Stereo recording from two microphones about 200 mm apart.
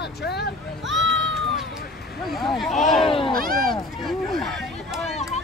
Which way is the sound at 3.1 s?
25° left (ahead or behind).